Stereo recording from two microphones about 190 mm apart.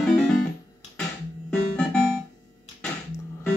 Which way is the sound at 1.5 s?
5° left (ahead or behind).